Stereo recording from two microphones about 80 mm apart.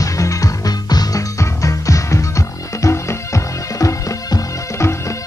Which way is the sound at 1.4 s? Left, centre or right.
Left.